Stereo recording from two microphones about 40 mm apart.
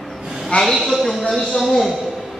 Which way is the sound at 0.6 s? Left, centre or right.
Centre.